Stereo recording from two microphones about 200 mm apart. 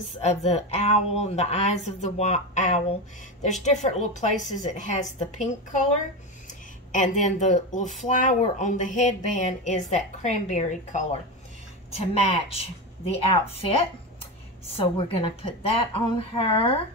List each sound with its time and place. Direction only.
0.2 s speech: 35° left (ahead or behind)
6.9 s a woman's voice: 35° left (ahead or behind)